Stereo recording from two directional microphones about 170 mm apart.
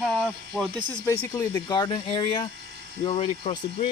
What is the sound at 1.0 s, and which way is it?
Speech, 15° left (ahead or behind).